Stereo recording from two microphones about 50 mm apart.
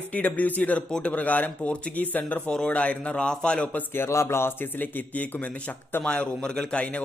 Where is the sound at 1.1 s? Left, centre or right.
Left.